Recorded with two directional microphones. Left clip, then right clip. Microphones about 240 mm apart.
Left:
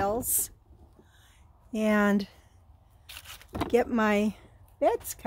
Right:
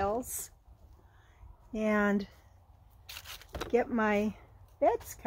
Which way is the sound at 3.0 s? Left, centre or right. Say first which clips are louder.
Left 1 dB; centre.